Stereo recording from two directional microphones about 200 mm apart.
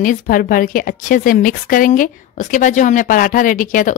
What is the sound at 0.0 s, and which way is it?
A woman's voice, 45° left (ahead or behind).